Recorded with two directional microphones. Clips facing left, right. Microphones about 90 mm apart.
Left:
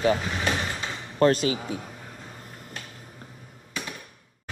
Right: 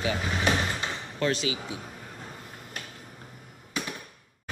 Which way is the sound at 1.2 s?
45° left (ahead or behind).